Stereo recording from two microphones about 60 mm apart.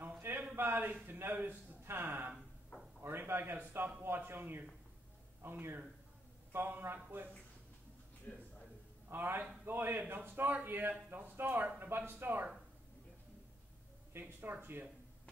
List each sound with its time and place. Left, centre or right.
0.2 s a sound: right
0.6 s speech: right
8.3 s a man's voice: left
9.1 s speech: right
14.2 s speech: right